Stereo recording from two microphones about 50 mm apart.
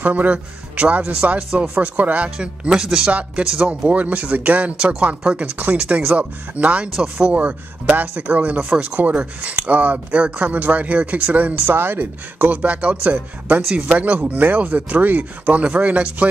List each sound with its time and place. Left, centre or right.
0.0 s speech: right
2.3 s speech: centre
3.9 s speech: right